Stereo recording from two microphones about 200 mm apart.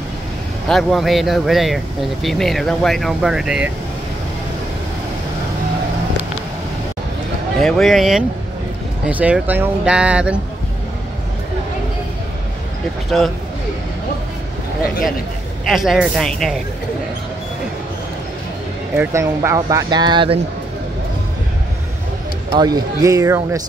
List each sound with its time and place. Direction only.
0.7 s speech: centre (ahead or behind)
7.6 s speech: centre (ahead or behind)
15.7 s speech: centre (ahead or behind)
18.9 s speech: 15° right (ahead or behind)
22.5 s speech: 20° right (ahead or behind)